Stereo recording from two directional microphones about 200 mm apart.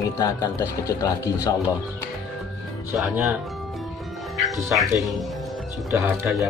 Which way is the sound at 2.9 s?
5° right (ahead or behind).